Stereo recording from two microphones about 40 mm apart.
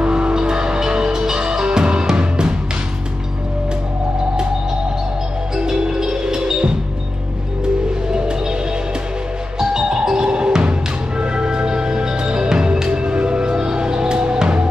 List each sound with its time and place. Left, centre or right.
0.0 s music: right
5.6 s music: centre
8.1 s music: centre
9.6 s music: centre